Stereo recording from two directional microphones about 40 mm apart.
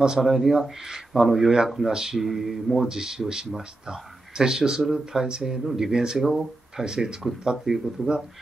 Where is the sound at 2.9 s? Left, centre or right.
Centre.